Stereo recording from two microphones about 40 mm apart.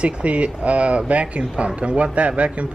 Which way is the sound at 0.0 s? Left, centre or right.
Right.